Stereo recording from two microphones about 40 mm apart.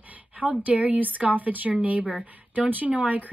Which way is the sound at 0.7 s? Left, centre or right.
Right.